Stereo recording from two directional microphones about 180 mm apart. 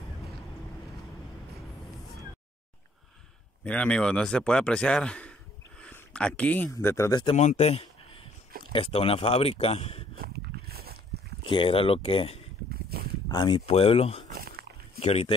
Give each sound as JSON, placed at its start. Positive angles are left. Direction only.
{"t": 3.6, "sound": "speech", "side_deg": 5}
{"t": 7.3, "sound": "a sound", "side_deg": 35}
{"t": 8.7, "sound": "speech", "side_deg": 30}
{"t": 10.1, "sound": "a sound", "side_deg": -60}
{"t": 11.4, "sound": "speech", "side_deg": 30}
{"t": 12.9, "sound": "a sound", "side_deg": -60}
{"t": 13.3, "sound": "speech", "side_deg": 25}
{"t": 14.3, "sound": "walk", "side_deg": -60}
{"t": 15.0, "sound": "speech", "side_deg": 35}